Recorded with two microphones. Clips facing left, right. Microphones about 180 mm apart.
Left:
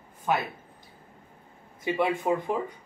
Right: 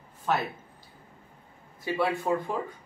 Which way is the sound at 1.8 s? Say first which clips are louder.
Left 2 dB; 15° left (ahead or behind).